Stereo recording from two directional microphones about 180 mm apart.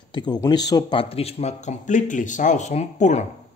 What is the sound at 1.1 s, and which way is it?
Speech, 35° left (ahead or behind).